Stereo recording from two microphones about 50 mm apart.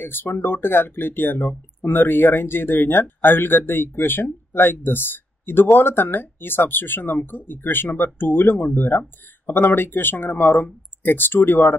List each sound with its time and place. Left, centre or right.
0.0 s speech: left